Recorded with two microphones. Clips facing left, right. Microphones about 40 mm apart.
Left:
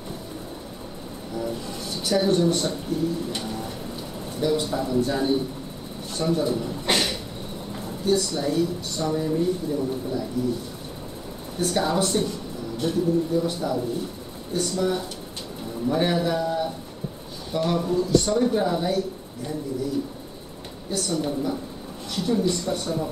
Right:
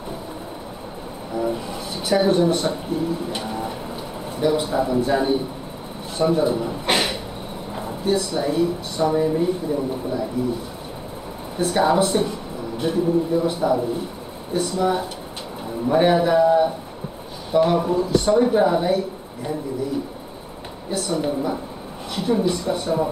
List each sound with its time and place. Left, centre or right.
1.3 s a man's voice: centre
11.5 s a man's voice: centre
20.9 s a man's voice: centre